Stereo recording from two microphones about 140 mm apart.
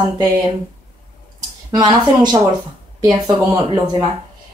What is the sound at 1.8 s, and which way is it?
Speech, 30° right (ahead or behind).